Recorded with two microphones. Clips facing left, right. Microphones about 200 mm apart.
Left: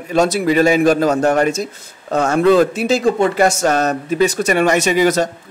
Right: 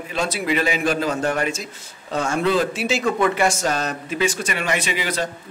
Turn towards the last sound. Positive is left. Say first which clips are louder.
# left 11 dB
turn(degrees=45)  # may be behind; listen again after turning